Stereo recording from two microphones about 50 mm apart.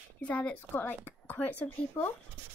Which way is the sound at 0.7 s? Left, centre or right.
Left.